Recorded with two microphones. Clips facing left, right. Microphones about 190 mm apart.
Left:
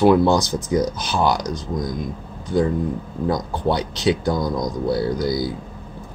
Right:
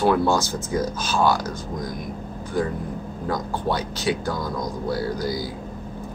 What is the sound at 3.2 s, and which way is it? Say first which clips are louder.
Speech: left 4 dB; 20° left (ahead or behind).